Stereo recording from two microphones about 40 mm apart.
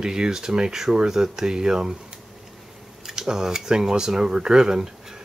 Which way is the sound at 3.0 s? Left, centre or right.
Centre.